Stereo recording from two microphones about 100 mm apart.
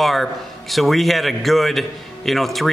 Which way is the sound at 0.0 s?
Centre (ahead or behind).